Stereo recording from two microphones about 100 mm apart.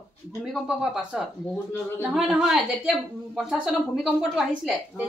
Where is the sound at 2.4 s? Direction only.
5° right (ahead or behind).